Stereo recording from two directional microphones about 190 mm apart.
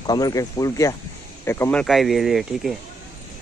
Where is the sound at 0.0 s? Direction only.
20° left (ahead or behind); by 2.7 s centre (ahead or behind).